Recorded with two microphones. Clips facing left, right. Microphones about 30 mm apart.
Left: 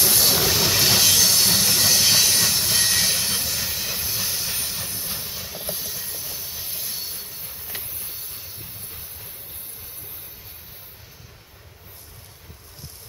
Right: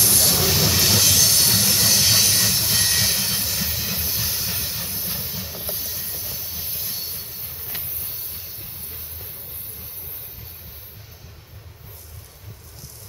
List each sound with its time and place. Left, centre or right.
0.0 s train wheels squealing: centre